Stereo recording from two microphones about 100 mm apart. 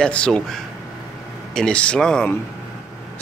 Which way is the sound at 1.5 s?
10° left (ahead or behind).